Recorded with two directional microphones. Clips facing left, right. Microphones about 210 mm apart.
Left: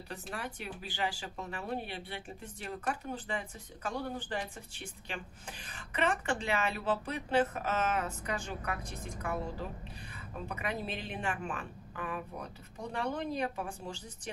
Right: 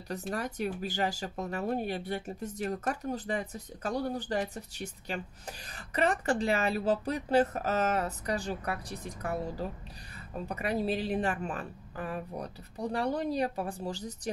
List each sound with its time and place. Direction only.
0.3 s speech: 40° right (ahead or behind)